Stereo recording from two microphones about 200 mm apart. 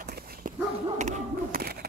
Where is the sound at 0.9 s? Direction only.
35° right (ahead or behind).